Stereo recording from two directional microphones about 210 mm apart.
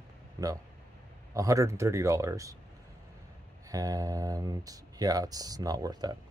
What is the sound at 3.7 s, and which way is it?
Speech, 15° right (ahead or behind).